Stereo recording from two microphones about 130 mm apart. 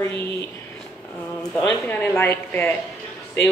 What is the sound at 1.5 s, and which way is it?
Speech, 10° left (ahead or behind).